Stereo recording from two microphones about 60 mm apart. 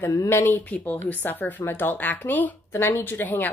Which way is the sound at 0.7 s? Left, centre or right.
Left.